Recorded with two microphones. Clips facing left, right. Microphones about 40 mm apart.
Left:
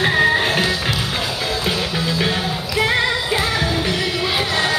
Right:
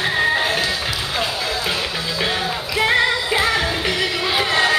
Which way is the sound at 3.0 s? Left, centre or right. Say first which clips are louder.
Right 1 dB; centre.